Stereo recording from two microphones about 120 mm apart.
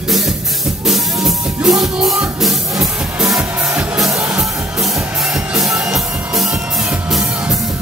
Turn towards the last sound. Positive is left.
turn(degrees=-5)  # may be behind; listen again after turning